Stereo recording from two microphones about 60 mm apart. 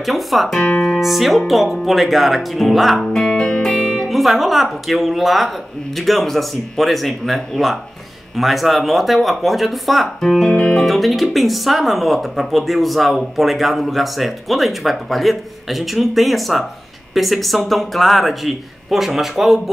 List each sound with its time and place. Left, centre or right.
0.0 s speech: centre
10.5 s speech: centre
10.8 s speech: centre